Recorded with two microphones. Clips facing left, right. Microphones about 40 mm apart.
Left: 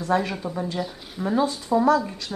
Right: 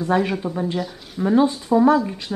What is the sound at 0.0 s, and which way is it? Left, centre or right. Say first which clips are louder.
Speech: right 3 dB; centre.